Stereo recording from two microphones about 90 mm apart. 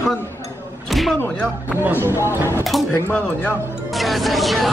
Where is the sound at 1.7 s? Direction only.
25° right (ahead or behind).